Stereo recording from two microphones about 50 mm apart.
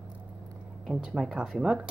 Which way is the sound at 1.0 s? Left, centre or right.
Centre.